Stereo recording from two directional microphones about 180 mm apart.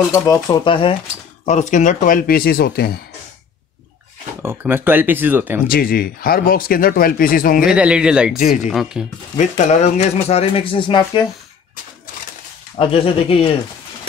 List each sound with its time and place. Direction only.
0.1 s speech: 20° left (ahead or behind)
1.4 s speech: 40° left (ahead or behind); by 3.0 s 60° left (ahead or behind)
4.4 s speech: 10° right (ahead or behind)
5.7 s speech: 55° left (ahead or behind)
7.6 s speech: 5° right (ahead or behind)
9.4 s speech: 40° left (ahead or behind)
12.7 s speech: 30° left (ahead or behind)